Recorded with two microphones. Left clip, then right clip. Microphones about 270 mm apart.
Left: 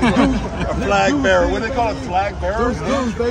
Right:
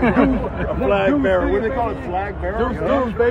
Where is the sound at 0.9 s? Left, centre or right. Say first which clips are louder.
Left 2 dB; left.